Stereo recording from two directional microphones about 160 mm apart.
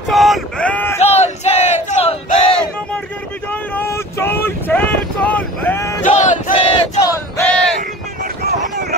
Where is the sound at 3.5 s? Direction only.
15° left (ahead or behind).